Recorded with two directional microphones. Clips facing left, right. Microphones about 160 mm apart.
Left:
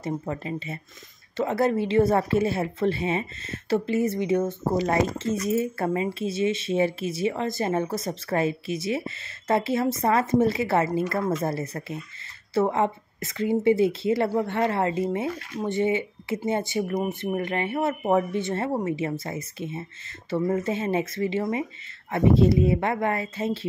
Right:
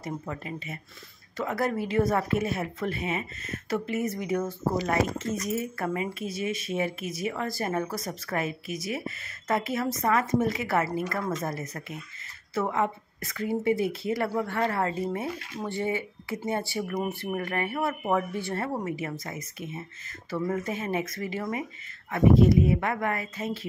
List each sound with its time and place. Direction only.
0.0 s speech: 30° left (ahead or behind)